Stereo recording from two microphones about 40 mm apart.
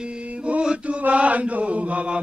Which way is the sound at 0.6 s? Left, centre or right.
Right.